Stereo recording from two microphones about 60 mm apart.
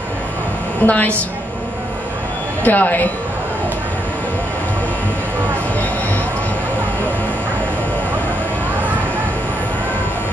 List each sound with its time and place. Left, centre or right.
0.8 s a woman's voice: left
2.6 s speech: left